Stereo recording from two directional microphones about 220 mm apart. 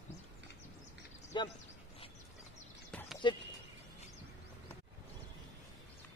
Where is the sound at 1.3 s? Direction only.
20° left (ahead or behind).